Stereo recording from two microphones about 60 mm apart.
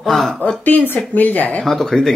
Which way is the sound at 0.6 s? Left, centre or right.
Left.